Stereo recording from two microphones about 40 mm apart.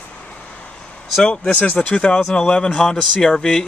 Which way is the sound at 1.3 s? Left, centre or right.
Left.